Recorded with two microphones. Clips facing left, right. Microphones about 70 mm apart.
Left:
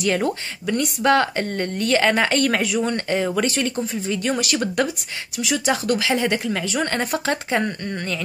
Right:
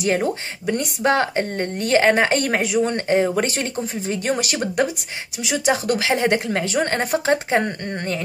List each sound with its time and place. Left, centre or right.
0.0 s speech: centre
2.9 s speech: right
4.6 s speech: centre
5.7 s speech: right